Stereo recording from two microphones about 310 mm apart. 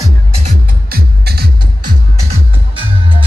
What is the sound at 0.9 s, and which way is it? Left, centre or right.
Music, right.